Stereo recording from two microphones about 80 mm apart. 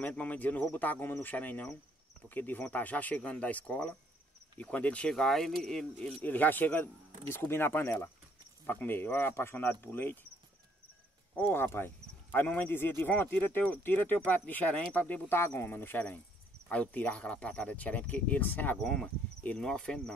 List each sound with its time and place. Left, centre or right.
0.0 s speech: centre
5.1 s speech: centre
5.9 s speech: centre
11.5 s speech: left
18.8 s speech: centre